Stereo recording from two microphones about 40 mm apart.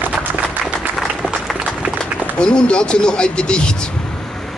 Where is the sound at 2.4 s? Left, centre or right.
Left.